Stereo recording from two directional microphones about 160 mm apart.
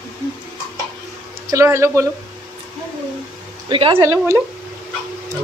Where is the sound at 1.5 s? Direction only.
15° right (ahead or behind).